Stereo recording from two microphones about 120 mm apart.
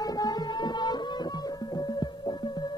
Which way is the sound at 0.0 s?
35° left (ahead or behind).